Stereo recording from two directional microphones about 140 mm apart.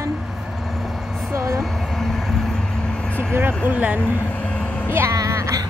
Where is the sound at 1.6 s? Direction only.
Centre (ahead or behind).